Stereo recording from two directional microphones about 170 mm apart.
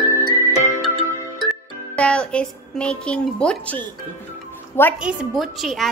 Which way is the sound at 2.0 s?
5° left (ahead or behind).